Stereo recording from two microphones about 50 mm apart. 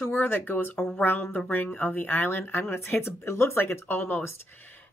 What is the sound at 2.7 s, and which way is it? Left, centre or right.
Speech, left.